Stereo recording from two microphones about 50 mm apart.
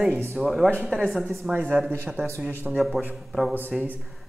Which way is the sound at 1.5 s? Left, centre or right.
Right.